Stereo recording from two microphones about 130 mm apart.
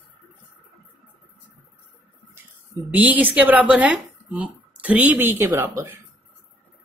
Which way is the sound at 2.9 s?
10° right (ahead or behind).